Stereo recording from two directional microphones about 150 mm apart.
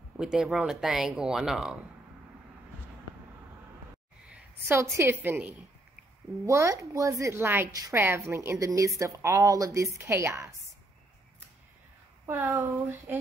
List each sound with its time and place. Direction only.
0.2 s speech: 5° right (ahead or behind)
4.3 s a sound: 15° right (ahead or behind)
4.9 s a woman's voice: 15° right (ahead or behind)
12.3 s speech: 15° right (ahead or behind)